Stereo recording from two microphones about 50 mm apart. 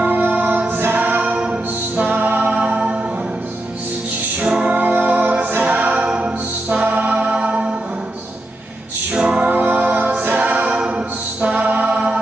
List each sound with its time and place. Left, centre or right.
0.0 s music: right
2.0 s music: right
4.4 s music: centre
4.7 s music: right
9.1 s music: centre
9.5 s music: right
11.4 s mantra: right